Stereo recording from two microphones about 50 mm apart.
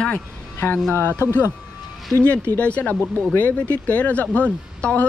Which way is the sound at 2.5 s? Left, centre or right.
Left.